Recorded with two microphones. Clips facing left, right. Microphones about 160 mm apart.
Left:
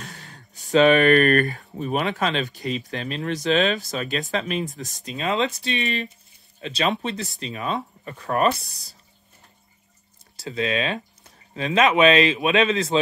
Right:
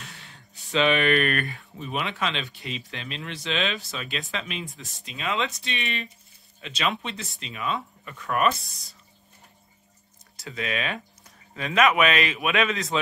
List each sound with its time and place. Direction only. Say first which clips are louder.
0.0 s speech: left 5 dB; 40° left (ahead or behind)
10.3 s speech: left 6 dB; 30° left (ahead or behind)